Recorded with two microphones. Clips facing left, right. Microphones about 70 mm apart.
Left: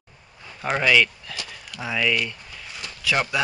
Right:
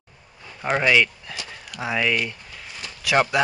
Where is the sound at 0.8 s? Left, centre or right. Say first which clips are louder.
Left 1 dB; centre.